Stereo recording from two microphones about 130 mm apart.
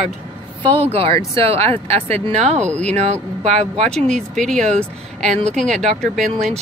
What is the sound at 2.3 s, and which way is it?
Speech, 60° right (ahead or behind).